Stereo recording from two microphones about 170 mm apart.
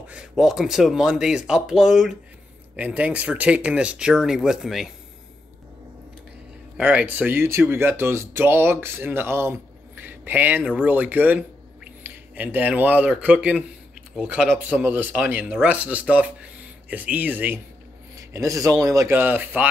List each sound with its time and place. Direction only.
0.0 s speech: 5° right (ahead or behind)
6.8 s speech: 5° right (ahead or behind)